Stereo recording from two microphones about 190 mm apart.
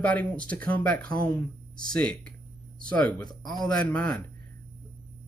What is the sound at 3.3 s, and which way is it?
Speech, 20° left (ahead or behind).